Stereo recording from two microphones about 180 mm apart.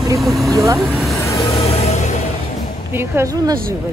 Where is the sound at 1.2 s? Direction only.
15° left (ahead or behind).